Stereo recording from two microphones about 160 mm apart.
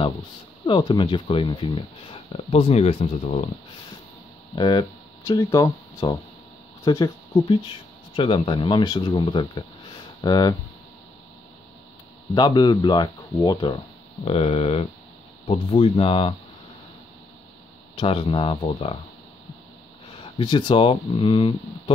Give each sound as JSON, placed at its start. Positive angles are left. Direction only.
{"t": 0.7, "sound": "speech", "side_deg": 30}
{"t": 4.6, "sound": "speech", "side_deg": 25}
{"t": 12.4, "sound": "speech", "side_deg": 25}
{"t": 14.2, "sound": "speech", "side_deg": 40}
{"t": 17.9, "sound": "speech", "side_deg": 35}
{"t": 20.3, "sound": "speech", "side_deg": 30}